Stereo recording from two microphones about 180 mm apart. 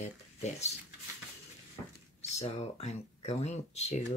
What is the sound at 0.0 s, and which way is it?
Speech, 40° left (ahead or behind).